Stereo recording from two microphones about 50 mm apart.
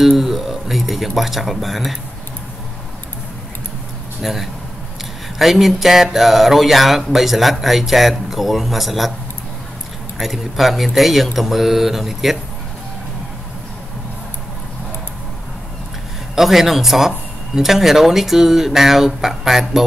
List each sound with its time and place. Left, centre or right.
0.0 s speech: centre
4.2 s speech: centre
10.1 s speech: centre
16.3 s speech: centre